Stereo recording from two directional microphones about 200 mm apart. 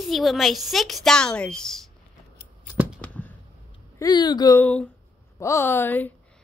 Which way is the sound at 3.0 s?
10° left (ahead or behind).